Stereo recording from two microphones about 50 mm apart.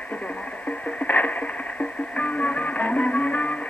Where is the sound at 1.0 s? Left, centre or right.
Left.